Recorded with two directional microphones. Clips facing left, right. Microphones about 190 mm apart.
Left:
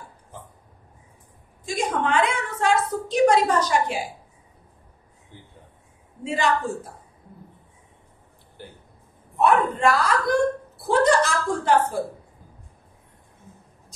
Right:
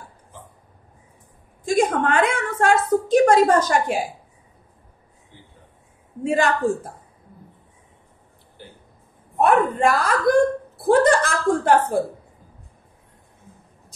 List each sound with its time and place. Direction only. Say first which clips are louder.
1.7 s a woman's voice: right 5 dB; 50° right (ahead or behind)
6.2 s a woman's voice: right 4 dB; 50° right (ahead or behind)
9.4 s speech: right 2 dB; 50° right (ahead or behind)